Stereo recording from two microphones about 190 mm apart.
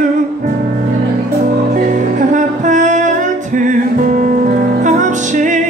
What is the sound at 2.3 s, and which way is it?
Music, 40° right (ahead or behind).